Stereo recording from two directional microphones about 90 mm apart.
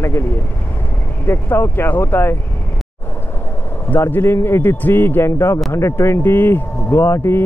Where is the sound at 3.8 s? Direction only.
20° left (ahead or behind).